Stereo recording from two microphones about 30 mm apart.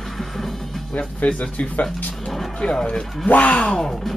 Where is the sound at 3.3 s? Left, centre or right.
Left.